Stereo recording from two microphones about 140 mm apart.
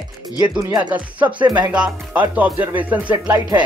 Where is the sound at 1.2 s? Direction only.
35° right (ahead or behind).